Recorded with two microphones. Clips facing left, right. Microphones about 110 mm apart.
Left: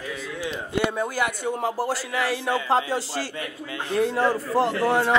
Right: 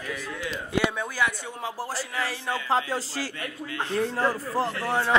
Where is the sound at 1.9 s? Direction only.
70° left (ahead or behind).